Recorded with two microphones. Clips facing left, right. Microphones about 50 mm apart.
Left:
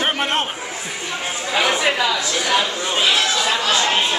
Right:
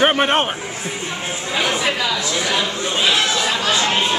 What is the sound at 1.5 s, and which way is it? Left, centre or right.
Speech, centre.